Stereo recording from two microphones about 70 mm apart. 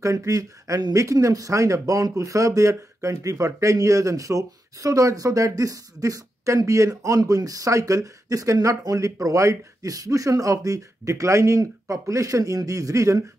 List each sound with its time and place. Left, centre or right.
0.0 s speech: right
7.2 s speech: right